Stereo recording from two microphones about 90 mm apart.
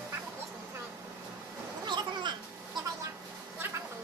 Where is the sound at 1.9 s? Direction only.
60° right (ahead or behind).